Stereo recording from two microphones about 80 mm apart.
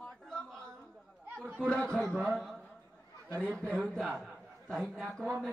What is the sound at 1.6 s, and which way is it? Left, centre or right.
A man's voice, centre.